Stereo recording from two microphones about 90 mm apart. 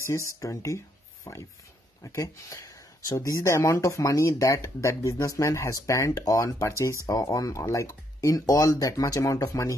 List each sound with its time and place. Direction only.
0.4 s speech: 35° left (ahead or behind)
6.7 s speech: 35° left (ahead or behind)